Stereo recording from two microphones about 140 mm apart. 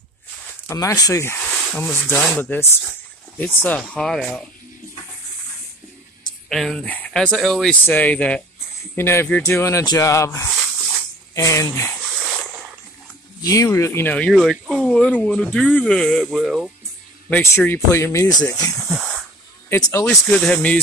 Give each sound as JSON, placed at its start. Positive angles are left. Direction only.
{"t": 0.7, "sound": "speech", "side_deg": 25}
{"t": 1.5, "sound": "a sound", "side_deg": 0}
{"t": 1.8, "sound": "speech", "side_deg": 15}
{"t": 6.5, "sound": "speech", "side_deg": 5}
{"t": 13.4, "sound": "speech", "side_deg": 25}
{"t": 14.3, "sound": "speech", "side_deg": 0}
{"t": 17.3, "sound": "speech", "side_deg": 15}
{"t": 18.9, "sound": "snake", "side_deg": 0}
{"t": 19.7, "sound": "speech", "side_deg": 20}